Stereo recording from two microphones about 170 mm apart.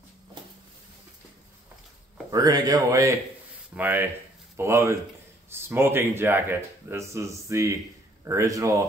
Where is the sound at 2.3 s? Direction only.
20° right (ahead or behind).